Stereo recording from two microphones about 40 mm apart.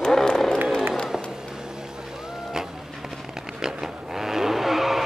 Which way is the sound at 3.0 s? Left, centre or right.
Centre.